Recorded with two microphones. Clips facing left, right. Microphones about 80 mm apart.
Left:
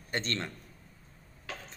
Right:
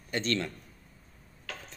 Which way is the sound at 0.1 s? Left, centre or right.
Left.